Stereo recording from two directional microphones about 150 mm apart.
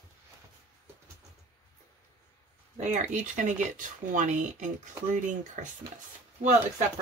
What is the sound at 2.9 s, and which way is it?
Speech, 55° right (ahead or behind).